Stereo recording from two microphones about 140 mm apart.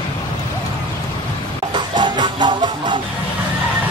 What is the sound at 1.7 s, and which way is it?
Music, 35° right (ahead or behind).